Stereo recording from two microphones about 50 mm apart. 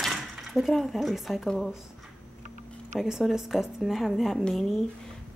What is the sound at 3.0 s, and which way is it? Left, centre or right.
Speech, centre.